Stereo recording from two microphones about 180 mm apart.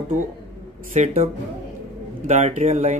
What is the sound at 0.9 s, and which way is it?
Speech, 40° right (ahead or behind).